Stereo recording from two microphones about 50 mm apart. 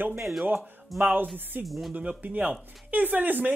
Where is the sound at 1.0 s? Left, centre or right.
Right.